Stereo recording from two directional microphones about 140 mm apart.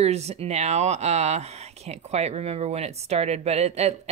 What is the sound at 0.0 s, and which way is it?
Speech, 50° right (ahead or behind).